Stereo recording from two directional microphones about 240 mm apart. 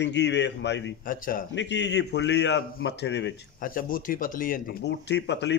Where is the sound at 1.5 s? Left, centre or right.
Left.